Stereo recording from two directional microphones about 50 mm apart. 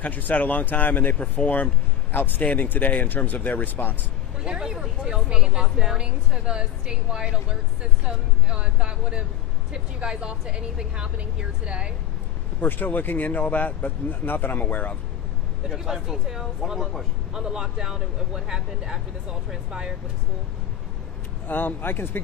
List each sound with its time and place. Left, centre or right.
0.0 s speech: left
4.5 s a woman's voice: centre
8.5 s a woman's voice: right
12.5 s speech: left
15.7 s a woman's voice: centre
21.5 s speech: left